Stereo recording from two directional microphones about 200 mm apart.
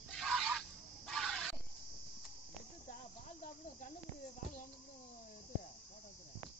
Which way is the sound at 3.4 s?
40° left (ahead or behind).